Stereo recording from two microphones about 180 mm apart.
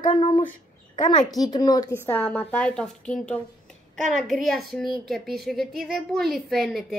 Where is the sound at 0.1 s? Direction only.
25° left (ahead or behind).